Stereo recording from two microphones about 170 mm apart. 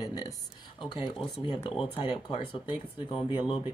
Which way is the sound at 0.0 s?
20° left (ahead or behind).